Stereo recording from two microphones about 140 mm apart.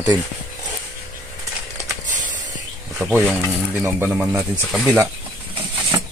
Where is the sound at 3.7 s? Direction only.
15° right (ahead or behind).